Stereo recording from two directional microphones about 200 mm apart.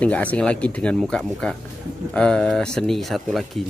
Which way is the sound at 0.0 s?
5° left (ahead or behind).